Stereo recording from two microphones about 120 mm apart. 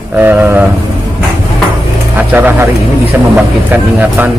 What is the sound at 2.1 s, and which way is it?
A man's voice, 15° right (ahead or behind).